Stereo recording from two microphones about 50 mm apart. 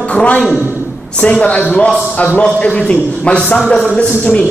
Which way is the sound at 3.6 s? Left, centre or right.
Centre.